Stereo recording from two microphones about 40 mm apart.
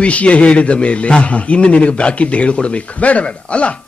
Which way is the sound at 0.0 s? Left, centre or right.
Left.